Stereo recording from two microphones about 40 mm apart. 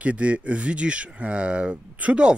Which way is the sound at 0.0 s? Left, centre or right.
Right.